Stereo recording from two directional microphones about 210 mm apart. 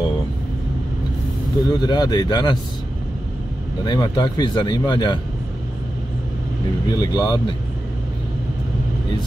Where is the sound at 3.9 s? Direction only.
20° left (ahead or behind).